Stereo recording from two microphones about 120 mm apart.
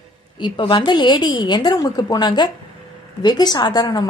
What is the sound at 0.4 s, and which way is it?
A woman's voice, 45° left (ahead or behind).